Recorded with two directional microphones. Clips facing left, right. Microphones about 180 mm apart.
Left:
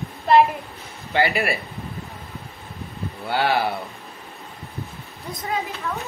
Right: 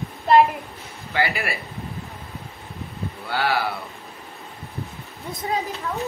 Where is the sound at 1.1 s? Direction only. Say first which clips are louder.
Left 4 dB; 30° left (ahead or behind).